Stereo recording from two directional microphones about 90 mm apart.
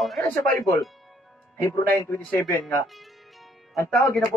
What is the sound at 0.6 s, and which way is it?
Speech, 40° left (ahead or behind).